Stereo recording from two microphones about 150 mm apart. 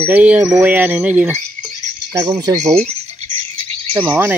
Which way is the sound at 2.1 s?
25° right (ahead or behind).